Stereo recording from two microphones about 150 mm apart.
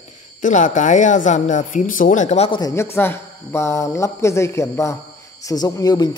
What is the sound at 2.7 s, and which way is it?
Speech, 15° left (ahead or behind).